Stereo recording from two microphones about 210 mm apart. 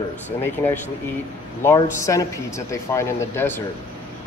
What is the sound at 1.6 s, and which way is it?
Speech, 15° left (ahead or behind).